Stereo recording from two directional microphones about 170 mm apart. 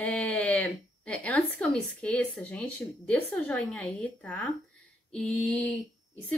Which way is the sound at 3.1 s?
5° left (ahead or behind).